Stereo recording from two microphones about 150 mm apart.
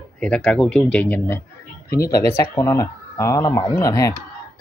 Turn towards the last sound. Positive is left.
turn(degrees=20)  # may be behind; listen again after turning